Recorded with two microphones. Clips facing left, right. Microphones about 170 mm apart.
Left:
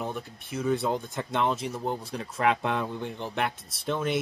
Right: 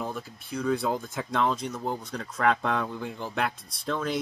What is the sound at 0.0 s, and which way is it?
Speech, centre (ahead or behind).